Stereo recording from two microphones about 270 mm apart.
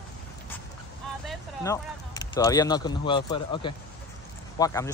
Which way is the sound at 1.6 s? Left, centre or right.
Centre.